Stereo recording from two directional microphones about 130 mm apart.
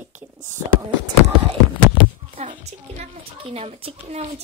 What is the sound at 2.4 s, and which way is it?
Speech, 70° right (ahead or behind).